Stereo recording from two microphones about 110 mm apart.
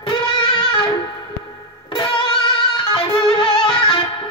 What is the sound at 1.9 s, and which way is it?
Music, 45° left (ahead or behind).